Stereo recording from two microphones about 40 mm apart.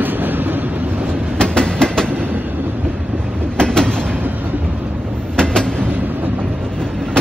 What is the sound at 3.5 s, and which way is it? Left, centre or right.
Train, left.